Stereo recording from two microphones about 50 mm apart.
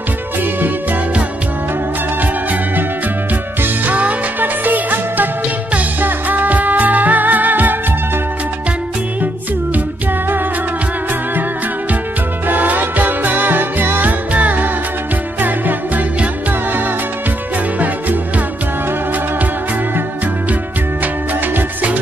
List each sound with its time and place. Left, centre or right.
3.6 s music: right
12.4 s music: right
21.5 s music: right